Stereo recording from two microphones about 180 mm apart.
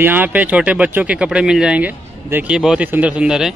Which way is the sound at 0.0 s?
10° right (ahead or behind).